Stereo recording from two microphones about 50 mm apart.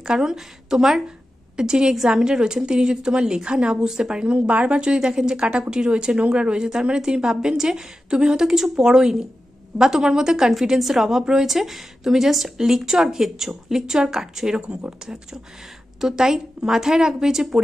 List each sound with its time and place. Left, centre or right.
0.0 s a woman's voice: centre